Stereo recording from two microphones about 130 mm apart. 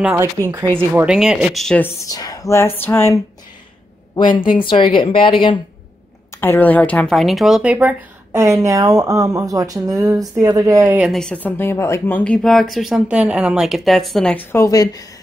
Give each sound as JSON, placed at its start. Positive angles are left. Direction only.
{"t": 0.1, "sound": "speech", "side_deg": -20}
{"t": 0.9, "sound": "speech", "side_deg": -5}
{"t": 1.8, "sound": "speech", "side_deg": 25}
{"t": 4.1, "sound": "a woman's voice", "side_deg": 35}
{"t": 6.3, "sound": "speech", "side_deg": 15}
{"t": 7.2, "sound": "speech", "side_deg": 0}
{"t": 8.3, "sound": "speech", "side_deg": -20}
{"t": 11.0, "sound": "speech", "side_deg": 0}
{"t": 12.4, "sound": "speech", "side_deg": 0}
{"t": 14.3, "sound": "speech", "side_deg": 15}